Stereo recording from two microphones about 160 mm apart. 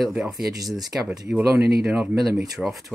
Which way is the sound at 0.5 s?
25° right (ahead or behind).